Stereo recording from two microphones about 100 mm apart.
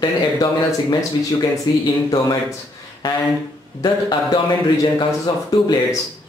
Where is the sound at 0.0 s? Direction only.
45° left (ahead or behind).